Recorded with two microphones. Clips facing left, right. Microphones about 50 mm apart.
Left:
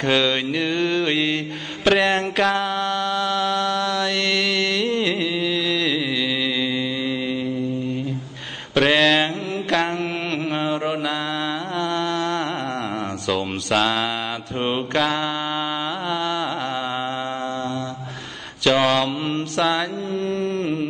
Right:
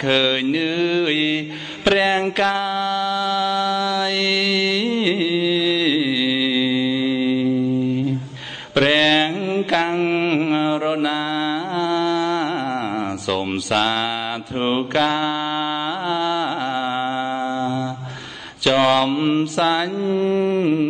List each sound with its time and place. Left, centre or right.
0.0 s mantra: centre
8.7 s a sound: centre
9.9 s mantra: centre
11.4 s music: centre
13.3 s mantra: centre
16.1 s music: centre
18.6 s speech: centre
19.5 s mantra: centre
20.2 s music: centre